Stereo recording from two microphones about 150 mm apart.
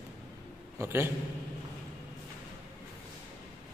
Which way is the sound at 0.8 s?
15° right (ahead or behind).